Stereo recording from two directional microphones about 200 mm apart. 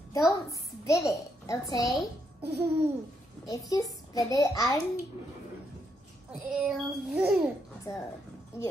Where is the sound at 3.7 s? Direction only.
20° left (ahead or behind).